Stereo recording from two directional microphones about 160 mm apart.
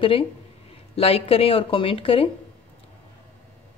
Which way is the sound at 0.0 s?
35° left (ahead or behind).